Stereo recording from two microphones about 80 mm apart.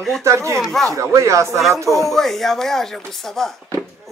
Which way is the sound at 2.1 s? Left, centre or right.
Centre.